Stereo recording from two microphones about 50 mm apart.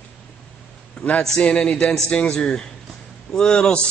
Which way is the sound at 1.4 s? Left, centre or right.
Centre.